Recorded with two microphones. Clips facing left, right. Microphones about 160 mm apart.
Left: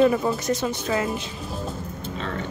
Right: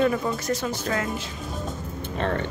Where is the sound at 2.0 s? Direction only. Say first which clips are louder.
Right 7 dB; 60° right (ahead or behind).